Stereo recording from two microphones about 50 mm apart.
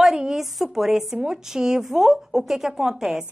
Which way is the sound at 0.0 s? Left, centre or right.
Centre.